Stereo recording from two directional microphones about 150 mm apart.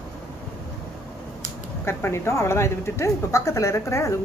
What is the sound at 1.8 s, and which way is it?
A woman's voice, 15° left (ahead or behind).